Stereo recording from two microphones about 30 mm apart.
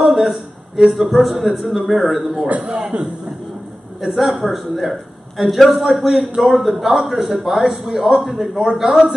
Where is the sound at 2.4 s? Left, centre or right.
Right.